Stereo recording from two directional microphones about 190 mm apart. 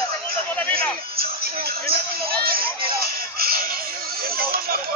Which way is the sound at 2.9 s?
50° right (ahead or behind).